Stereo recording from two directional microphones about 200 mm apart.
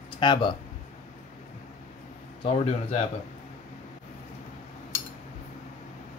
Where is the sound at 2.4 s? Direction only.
30° left (ahead or behind).